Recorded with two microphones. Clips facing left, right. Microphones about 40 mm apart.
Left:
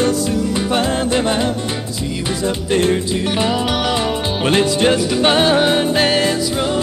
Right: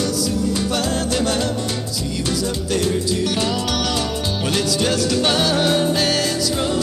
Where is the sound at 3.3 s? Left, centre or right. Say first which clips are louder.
Left 4 dB; left.